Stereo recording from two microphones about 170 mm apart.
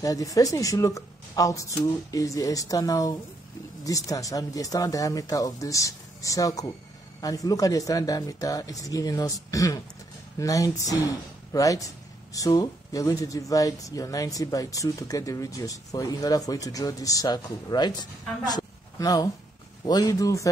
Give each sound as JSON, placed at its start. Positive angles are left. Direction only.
{"t": 0.0, "sound": "speech", "side_deg": 20}
{"t": 18.4, "sound": "a sound", "side_deg": 25}
{"t": 19.9, "sound": "speech", "side_deg": 20}